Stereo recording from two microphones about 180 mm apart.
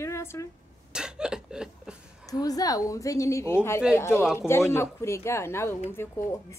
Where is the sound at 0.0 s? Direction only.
15° left (ahead or behind).